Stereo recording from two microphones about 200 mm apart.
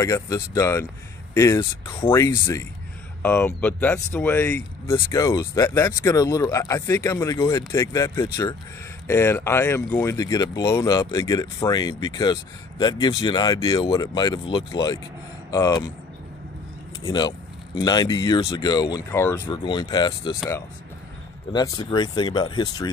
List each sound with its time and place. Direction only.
0.0 s speech: 15° left (ahead or behind)
17.0 s speech: 20° left (ahead or behind)
19.5 s speech: 25° left (ahead or behind)
21.5 s speech: 20° left (ahead or behind)